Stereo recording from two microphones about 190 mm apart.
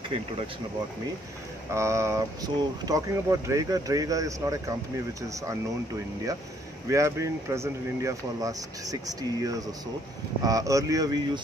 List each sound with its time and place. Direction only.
1.7 s speech: 15° right (ahead or behind)
6.9 s speech: 15° right (ahead or behind)